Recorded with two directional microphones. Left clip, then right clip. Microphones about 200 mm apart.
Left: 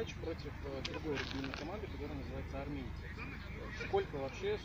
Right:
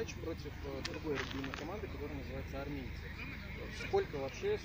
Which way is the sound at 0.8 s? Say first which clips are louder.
Right 1 dB; 15° left (ahead or behind).